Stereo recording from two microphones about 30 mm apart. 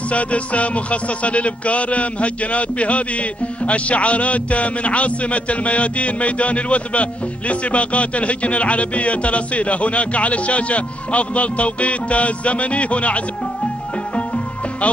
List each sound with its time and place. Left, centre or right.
0.1 s music: left